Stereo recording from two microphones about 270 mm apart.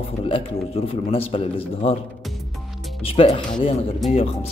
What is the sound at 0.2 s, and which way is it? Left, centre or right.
A man's voice, left.